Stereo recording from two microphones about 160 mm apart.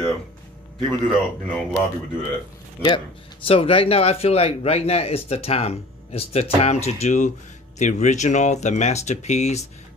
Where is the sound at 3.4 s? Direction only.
35° left (ahead or behind).